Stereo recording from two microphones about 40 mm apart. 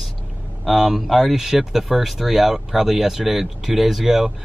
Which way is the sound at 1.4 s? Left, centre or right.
Centre.